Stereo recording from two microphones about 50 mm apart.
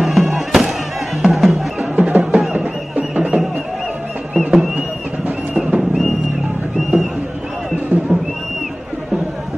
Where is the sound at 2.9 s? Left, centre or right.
Right.